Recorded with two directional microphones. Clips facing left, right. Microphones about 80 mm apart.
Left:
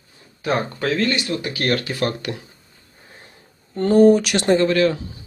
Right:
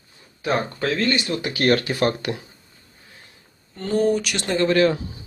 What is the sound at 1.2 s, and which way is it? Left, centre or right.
Speech, centre.